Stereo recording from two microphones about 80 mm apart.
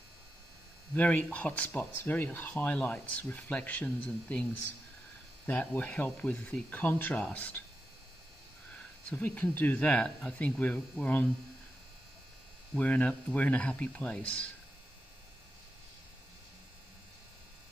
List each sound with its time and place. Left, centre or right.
0.9 s speech: centre
5.5 s speech: centre
8.7 s speech: centre
12.7 s speech: centre